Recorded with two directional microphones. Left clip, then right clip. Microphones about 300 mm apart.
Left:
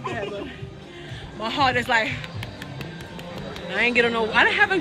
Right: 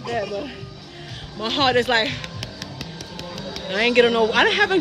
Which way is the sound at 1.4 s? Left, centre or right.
Centre.